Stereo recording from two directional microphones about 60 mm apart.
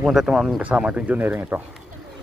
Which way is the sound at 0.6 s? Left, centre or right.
Right.